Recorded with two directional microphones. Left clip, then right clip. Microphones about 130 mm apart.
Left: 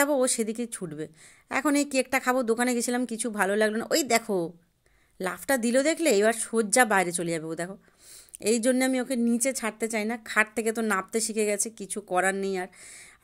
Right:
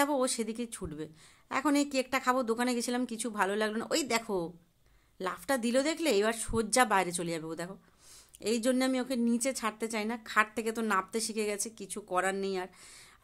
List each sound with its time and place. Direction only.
0.0 s a woman's voice: 30° left (ahead or behind)